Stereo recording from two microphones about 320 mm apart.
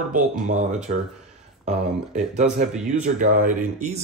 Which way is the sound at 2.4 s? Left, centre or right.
Right.